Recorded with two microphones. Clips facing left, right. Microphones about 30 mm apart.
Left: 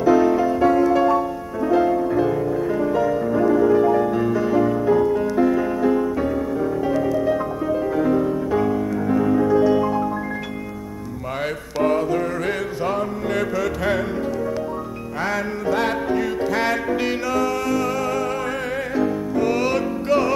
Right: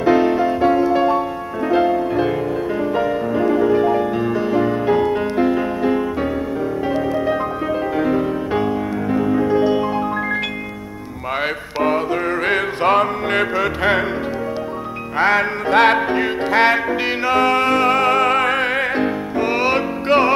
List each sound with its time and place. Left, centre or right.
0.0 s music: right
1.7 s music: right
4.8 s music: right
9.5 s music: right
11.4 s mantra: right
12.9 s mantra: right
13.4 s music: right
15.1 s music: right
17.4 s music: right
19.4 s music: right